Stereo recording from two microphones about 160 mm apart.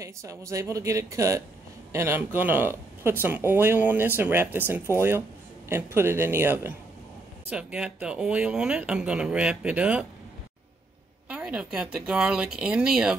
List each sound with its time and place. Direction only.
0.0 s speech: 20° right (ahead or behind)
11.2 s speech: 5° right (ahead or behind)